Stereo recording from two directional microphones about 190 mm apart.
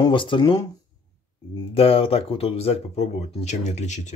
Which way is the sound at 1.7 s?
30° left (ahead or behind).